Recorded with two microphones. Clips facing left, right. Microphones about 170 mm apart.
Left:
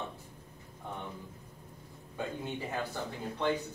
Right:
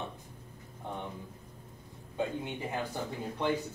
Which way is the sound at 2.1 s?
15° right (ahead or behind).